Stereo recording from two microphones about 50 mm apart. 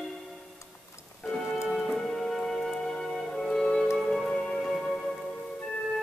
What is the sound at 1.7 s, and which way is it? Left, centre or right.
Music, centre.